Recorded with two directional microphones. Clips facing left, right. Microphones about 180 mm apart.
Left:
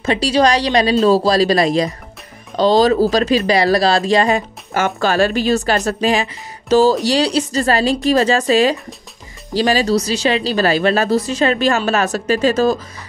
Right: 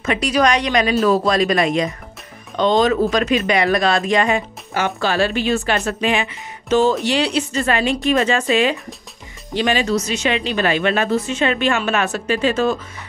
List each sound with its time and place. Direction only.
0.0 s speech: 30° left (ahead or behind)
4.7 s speech: 45° left (ahead or behind)